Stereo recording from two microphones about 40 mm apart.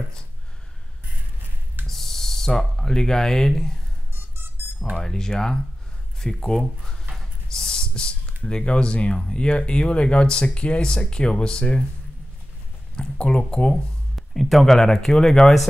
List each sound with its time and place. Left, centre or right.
1.9 s owl: centre
4.1 s music: right
5.0 s speech: centre
13.2 s speech: left
14.1 s speech: centre